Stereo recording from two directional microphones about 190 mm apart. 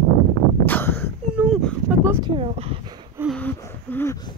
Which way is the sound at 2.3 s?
30° right (ahead or behind).